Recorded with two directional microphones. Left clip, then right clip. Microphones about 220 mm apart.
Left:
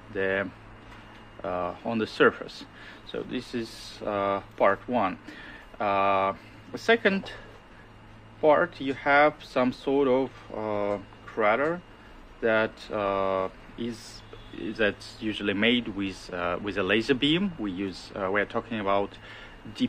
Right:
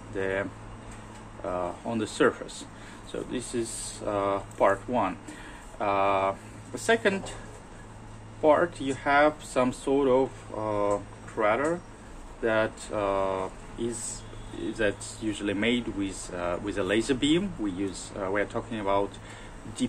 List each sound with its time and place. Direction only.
0.1 s speech: 50° left (ahead or behind)
8.4 s speech: 50° left (ahead or behind)